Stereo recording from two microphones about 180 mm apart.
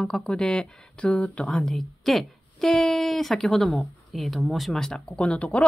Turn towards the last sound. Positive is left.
turn(degrees=5)  # may be behind; listen again after turning